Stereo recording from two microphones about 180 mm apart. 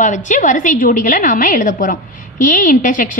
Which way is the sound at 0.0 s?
45° left (ahead or behind).